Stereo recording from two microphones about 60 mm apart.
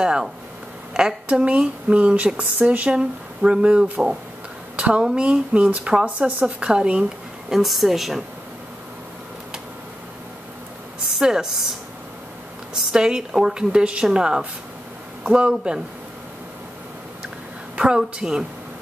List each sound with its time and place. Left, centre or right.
0.0 s speech: centre
7.5 s speech: centre
11.1 s speech: centre
12.9 s speech: centre
17.7 s speech: centre